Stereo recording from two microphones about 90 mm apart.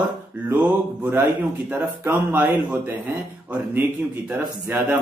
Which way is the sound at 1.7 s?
15° right (ahead or behind).